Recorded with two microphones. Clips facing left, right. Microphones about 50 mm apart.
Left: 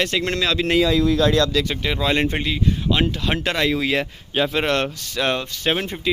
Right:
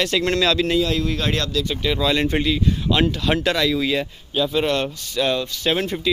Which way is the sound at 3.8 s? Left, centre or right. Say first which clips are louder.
Even; left.